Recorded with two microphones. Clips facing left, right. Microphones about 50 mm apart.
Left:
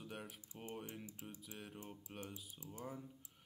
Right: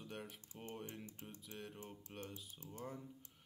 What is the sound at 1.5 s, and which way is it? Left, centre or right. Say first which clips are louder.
Speech: right 3 dB; centre.